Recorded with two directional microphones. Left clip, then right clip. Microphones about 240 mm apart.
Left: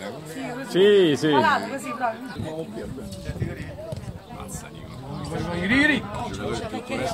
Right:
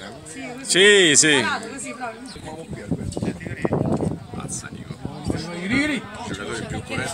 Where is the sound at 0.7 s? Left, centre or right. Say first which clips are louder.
Right 3 dB; centre.